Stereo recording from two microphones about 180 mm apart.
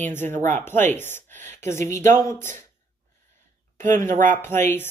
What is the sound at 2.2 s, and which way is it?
Speech, 15° left (ahead or behind).